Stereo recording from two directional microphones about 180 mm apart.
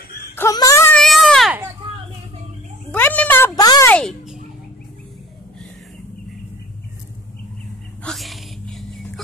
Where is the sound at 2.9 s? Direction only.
10° left (ahead or behind).